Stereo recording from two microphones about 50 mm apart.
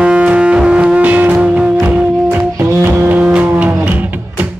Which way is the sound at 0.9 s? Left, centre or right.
Right.